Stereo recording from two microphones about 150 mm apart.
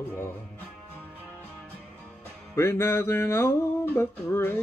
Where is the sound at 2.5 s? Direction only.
15° left (ahead or behind).